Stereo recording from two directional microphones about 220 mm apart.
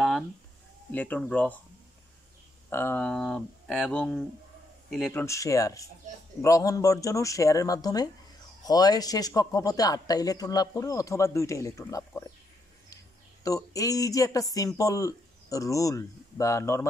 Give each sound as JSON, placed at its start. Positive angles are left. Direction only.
{"t": 0.9, "sound": "speech", "side_deg": 5}
{"t": 2.7, "sound": "speech", "side_deg": 10}